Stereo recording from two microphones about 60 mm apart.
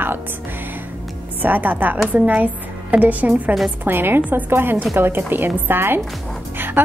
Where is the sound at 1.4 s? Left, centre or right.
Right.